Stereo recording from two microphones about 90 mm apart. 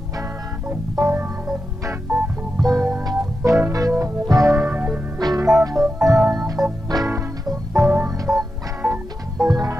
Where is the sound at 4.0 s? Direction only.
35° right (ahead or behind).